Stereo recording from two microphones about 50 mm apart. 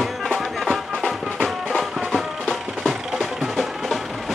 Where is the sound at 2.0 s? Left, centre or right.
Centre.